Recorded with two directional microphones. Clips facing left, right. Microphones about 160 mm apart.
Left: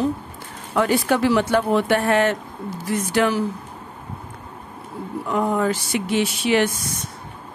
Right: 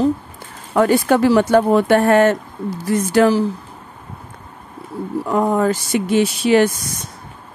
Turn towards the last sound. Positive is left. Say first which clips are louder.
# right 5 dB
turn(degrees=-40)  # may be behind; listen again after turning